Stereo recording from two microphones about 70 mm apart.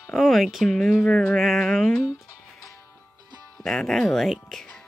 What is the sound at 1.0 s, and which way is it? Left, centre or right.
Music, centre.